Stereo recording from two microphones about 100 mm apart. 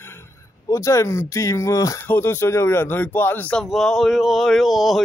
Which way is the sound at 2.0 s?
25° left (ahead or behind).